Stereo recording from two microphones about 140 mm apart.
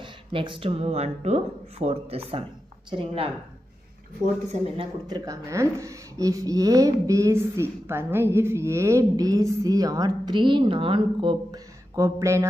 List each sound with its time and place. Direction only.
0.0 s a woman's voice: 35° right (ahead or behind)
4.7 s speech: 30° right (ahead or behind)